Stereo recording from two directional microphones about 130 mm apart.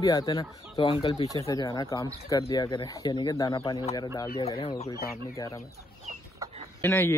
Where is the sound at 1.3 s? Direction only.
25° left (ahead or behind).